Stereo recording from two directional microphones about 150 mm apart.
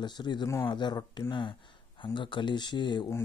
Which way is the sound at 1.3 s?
30° left (ahead or behind).